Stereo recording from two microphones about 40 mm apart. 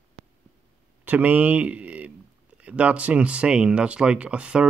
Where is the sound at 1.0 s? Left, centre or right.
Right.